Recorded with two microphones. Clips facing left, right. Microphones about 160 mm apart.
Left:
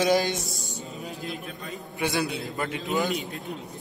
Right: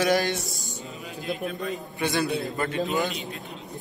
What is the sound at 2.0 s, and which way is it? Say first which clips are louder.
Speech: right 1 dB; 20° left (ahead or behind).